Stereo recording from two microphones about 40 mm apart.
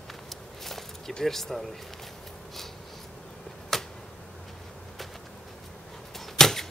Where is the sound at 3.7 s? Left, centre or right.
Centre.